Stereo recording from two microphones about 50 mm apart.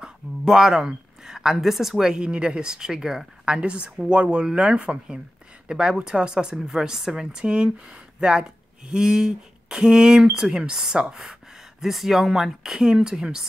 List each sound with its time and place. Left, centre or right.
0.0 s speech: centre
3.4 s speech: right